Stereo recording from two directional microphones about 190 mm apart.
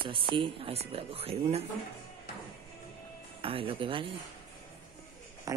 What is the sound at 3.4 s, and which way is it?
Speech, 30° right (ahead or behind).